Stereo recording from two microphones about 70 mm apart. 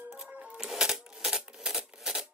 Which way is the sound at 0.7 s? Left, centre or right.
Centre.